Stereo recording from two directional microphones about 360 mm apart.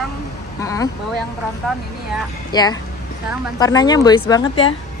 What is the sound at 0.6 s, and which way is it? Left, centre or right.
Speech, centre.